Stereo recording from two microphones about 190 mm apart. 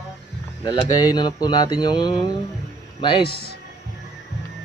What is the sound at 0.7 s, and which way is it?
A man's voice, 20° left (ahead or behind).